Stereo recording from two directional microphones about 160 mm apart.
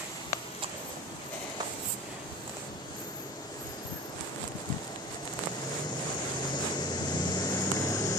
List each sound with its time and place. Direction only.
6.8 s vehicle: 25° left (ahead or behind)